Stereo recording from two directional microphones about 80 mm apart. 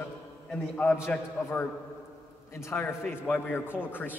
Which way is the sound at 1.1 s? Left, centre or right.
Centre.